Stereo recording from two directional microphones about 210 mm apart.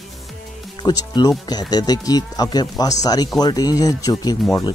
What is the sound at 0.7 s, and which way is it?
Speech, 20° left (ahead or behind).